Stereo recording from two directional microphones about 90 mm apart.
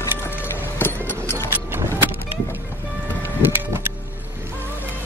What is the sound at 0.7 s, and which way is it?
Music, 25° left (ahead or behind).